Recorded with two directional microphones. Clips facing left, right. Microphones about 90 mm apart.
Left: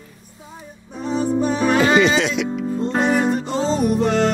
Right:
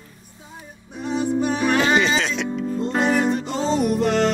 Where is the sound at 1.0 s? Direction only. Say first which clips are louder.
Left 2 dB; 40° left (ahead or behind).